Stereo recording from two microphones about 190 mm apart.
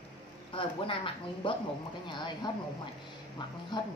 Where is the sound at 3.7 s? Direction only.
20° left (ahead or behind).